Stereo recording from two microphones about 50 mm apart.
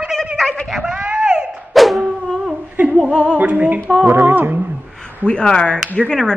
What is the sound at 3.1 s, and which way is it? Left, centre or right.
Speech, left.